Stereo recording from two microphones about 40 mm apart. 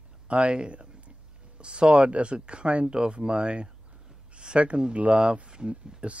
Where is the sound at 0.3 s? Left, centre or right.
Right.